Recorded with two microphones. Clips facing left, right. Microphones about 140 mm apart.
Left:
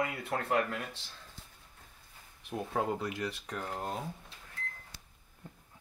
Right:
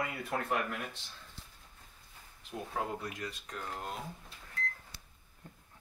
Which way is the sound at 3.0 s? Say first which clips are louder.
Left 5 dB; 85° left.